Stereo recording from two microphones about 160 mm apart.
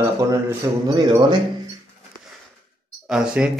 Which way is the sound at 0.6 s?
20° right (ahead or behind).